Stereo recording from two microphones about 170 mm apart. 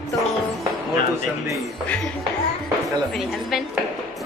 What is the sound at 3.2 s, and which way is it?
Music, centre (ahead or behind).